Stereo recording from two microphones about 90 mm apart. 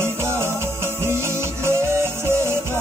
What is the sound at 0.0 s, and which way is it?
Music, 30° right (ahead or behind).